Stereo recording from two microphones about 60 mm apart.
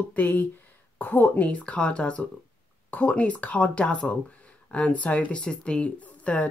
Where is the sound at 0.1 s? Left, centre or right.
Left.